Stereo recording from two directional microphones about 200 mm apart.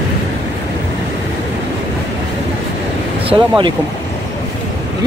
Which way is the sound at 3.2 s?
25° right (ahead or behind).